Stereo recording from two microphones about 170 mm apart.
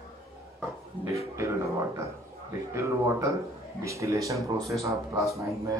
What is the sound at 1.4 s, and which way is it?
Speech, 15° right (ahead or behind).